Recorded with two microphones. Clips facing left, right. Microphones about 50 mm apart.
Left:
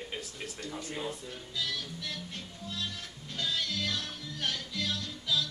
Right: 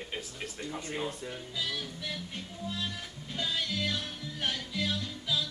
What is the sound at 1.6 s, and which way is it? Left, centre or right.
Music, centre.